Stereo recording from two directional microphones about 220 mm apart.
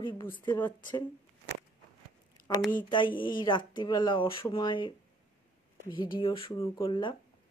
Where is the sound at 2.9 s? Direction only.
20° left (ahead or behind).